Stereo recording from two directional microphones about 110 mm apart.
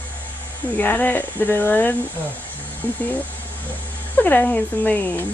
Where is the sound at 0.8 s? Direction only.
15° left (ahead or behind).